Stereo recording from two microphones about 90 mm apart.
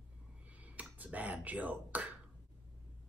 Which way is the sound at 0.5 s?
15° right (ahead or behind).